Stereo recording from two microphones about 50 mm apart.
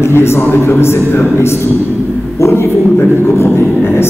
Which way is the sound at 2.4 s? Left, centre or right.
Left.